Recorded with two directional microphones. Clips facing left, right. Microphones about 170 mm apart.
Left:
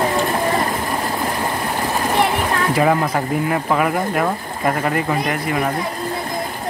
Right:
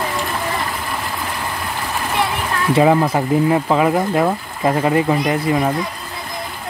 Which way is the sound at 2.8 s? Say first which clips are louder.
Right 5 dB; 15° right (ahead or behind).